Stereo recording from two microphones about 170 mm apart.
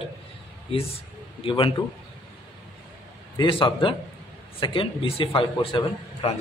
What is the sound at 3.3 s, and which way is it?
A man's voice, 30° left (ahead or behind).